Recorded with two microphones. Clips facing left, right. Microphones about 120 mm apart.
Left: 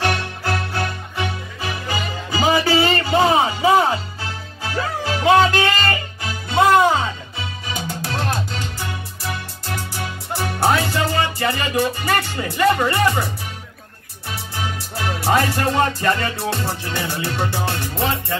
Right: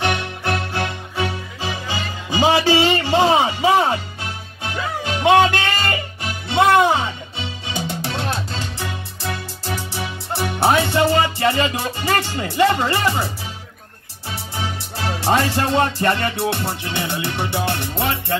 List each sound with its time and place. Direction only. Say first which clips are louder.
0.0 s music: even; 20° right (ahead or behind)
2.3 s music: right 2 dB; 25° right (ahead or behind)
14.3 s music: even; 25° right (ahead or behind)